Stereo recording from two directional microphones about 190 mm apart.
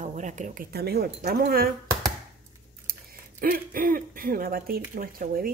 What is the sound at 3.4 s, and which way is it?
Speech, 50° right (ahead or behind).